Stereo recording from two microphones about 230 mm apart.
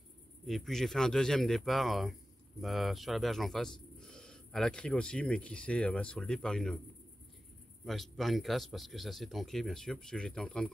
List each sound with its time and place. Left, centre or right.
0.5 s speech: centre
7.8 s speech: centre